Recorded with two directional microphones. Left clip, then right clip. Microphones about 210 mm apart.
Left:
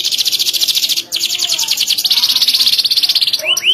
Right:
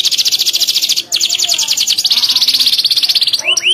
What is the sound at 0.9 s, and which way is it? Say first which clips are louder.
Bird: right 3 dB; 5° right (ahead or behind).